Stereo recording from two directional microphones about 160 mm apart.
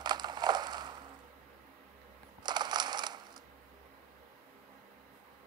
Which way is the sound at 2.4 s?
25° right (ahead or behind).